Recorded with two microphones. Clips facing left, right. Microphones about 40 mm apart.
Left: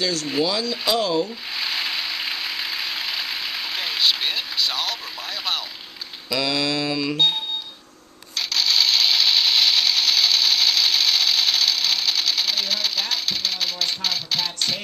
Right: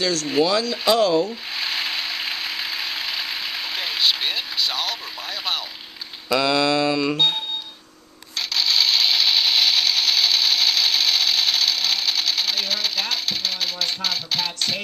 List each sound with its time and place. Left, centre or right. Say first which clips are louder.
0.0 s speech: right 2 dB; centre
1.6 s mechanisms: even; centre
6.3 s music: right 4 dB; right
8.5 s a sound: even; centre